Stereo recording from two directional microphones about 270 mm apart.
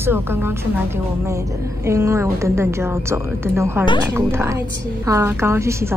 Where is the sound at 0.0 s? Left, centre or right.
Centre.